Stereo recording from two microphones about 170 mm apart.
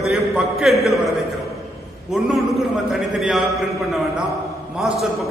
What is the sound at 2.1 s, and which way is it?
A man's voice, 5° right (ahead or behind).